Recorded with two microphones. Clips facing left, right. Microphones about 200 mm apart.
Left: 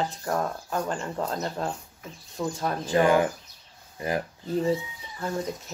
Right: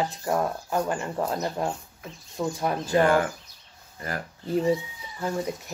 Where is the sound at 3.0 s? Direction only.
15° left (ahead or behind).